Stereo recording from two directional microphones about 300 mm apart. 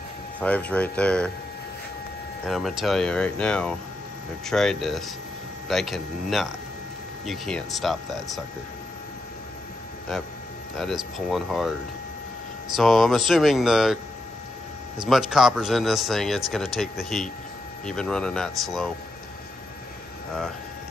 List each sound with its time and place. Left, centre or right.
0.4 s speech: centre
2.4 s speech: centre
10.8 s speech: centre
12.7 s speech: centre
15.0 s speech: centre